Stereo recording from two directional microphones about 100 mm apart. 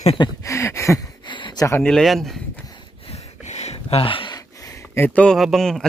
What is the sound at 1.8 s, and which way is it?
Speech, 5° left (ahead or behind).